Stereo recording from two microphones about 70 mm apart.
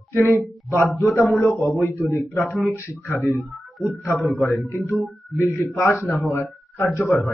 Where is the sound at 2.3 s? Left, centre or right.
Centre.